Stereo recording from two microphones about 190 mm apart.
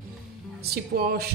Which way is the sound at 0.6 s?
55° right (ahead or behind).